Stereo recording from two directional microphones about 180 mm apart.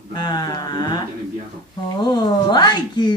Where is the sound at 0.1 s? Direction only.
20° left (ahead or behind).